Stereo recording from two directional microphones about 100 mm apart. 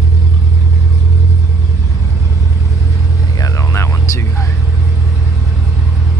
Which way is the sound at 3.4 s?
30° left (ahead or behind).